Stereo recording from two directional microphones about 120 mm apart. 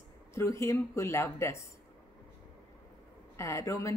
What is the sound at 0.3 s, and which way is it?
Speech, 25° left (ahead or behind).